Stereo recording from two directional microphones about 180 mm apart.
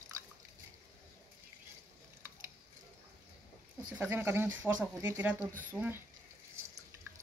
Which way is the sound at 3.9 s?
10° right (ahead or behind).